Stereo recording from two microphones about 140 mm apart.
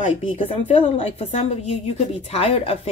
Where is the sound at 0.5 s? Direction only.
45° left (ahead or behind).